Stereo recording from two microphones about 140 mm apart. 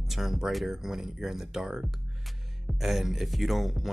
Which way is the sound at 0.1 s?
Centre (ahead or behind).